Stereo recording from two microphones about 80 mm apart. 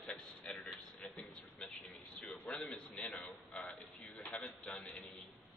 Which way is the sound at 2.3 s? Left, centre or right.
Centre.